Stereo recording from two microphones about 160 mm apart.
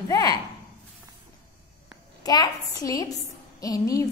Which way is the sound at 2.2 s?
25° left (ahead or behind).